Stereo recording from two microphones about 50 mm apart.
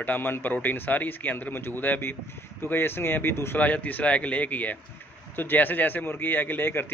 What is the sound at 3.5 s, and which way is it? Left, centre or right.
A man's voice, left.